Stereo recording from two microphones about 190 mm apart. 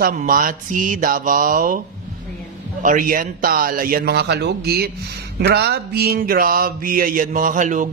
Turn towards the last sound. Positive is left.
turn(degrees=-40)  # may be behind; listen again after turning